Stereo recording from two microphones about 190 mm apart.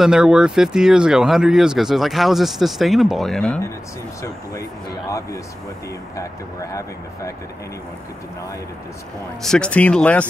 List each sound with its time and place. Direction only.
0.0 s speech: 5° right (ahead or behind)
6.1 s speech: 15° left (ahead or behind)
9.4 s speech: 5° left (ahead or behind)